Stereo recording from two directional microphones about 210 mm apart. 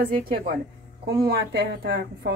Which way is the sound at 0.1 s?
45° right (ahead or behind).